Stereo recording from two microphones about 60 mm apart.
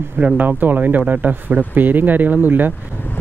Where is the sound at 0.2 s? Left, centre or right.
Right.